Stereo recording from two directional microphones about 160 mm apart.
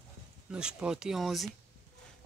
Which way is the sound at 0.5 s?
5° right (ahead or behind).